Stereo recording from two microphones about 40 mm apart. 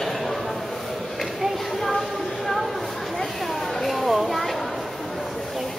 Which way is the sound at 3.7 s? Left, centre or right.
Centre.